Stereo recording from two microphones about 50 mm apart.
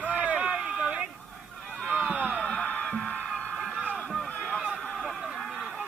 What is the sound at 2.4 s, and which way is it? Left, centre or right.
Music, left.